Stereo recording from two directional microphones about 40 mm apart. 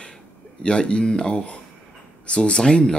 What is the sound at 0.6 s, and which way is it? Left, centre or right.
Speech, left.